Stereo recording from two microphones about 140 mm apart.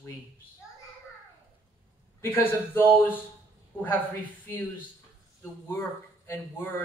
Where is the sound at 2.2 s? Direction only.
15° left (ahead or behind).